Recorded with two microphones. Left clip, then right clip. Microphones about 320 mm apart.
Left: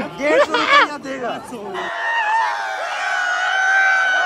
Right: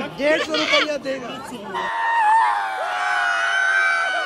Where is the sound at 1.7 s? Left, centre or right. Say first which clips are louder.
Right 1 dB; centre.